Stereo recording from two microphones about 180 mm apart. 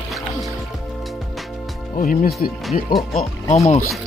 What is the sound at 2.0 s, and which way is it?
Speech, 50° left (ahead or behind).